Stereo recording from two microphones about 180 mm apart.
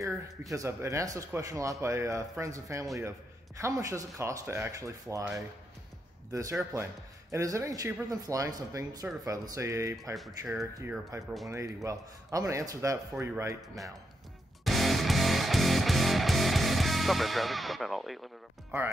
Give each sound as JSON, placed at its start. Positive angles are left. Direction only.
{"t": 0.5, "sound": "speech", "side_deg": -15}
{"t": 6.7, "sound": "speech", "side_deg": -15}
{"t": 10.1, "sound": "speech", "side_deg": 0}
{"t": 10.5, "sound": "speech", "side_deg": -10}
{"t": 14.6, "sound": "music", "side_deg": 0}